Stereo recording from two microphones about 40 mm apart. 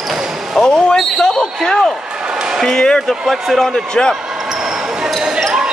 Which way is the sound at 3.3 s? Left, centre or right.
Centre.